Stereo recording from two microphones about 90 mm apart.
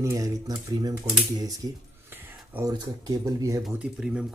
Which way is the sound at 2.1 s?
25° right (ahead or behind).